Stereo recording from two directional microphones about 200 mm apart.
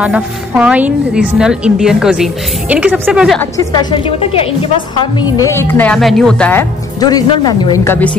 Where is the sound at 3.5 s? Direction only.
25° left (ahead or behind); by 6.6 s 5° left (ahead or behind).